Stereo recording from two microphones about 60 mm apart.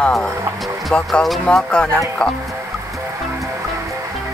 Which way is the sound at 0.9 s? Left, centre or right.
Centre.